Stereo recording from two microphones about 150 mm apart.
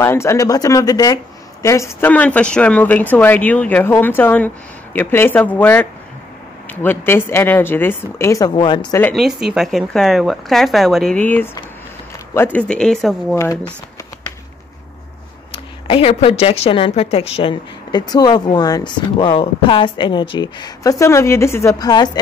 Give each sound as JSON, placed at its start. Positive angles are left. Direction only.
{"t": 0.0, "sound": "speech", "side_deg": 20}
{"t": 9.1, "sound": "speech", "side_deg": 0}
{"t": 11.1, "sound": "speech", "side_deg": 10}
{"t": 13.3, "sound": "speech", "side_deg": 20}
{"t": 15.9, "sound": "a woman's voice", "side_deg": 40}
{"t": 17.9, "sound": "speech", "side_deg": 25}